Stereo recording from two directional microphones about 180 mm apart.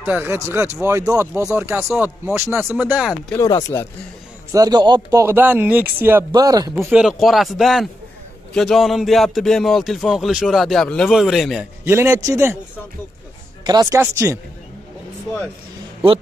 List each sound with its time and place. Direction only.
0.0 s speech: 10° right (ahead or behind)
3.3 s speech: 20° left (ahead or behind)
4.5 s speech: 20° right (ahead or behind)
6.8 s speech: 5° right (ahead or behind)
11.8 s speech: 15° right (ahead or behind)
13.7 s speech: 20° right (ahead or behind)